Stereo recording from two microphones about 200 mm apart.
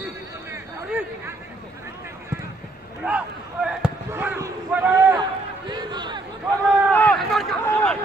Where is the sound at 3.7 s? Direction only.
5° right (ahead or behind).